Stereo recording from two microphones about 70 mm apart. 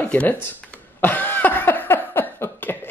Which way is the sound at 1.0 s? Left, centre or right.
Left.